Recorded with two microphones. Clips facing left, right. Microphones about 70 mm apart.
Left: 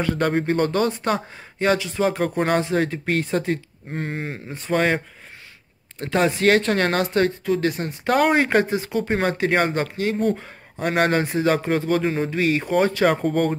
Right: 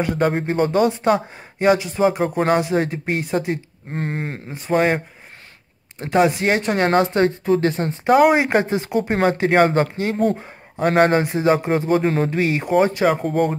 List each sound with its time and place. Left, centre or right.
0.2 s speech: centre
3.9 s speech: right
4.5 s speech: centre; by 8.1 s right
8.1 s speech: centre
9.5 s speech: right
12.0 s speech: right
12.4 s speech: right
13.0 s speech: centre